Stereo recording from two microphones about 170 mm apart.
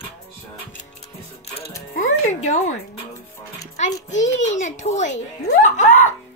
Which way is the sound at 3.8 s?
45° left (ahead or behind).